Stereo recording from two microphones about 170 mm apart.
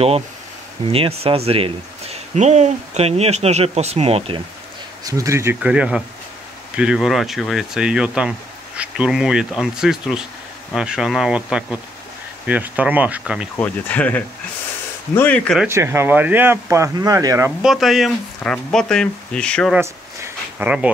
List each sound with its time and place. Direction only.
0.8 s speech: 35° right (ahead or behind)
5.0 s speech: 20° right (ahead or behind)
13.6 s speech: 10° left (ahead or behind)
15.6 s speech: 15° right (ahead or behind)
17.6 s speech: centre (ahead or behind)
19.7 s a sound: 10° right (ahead or behind)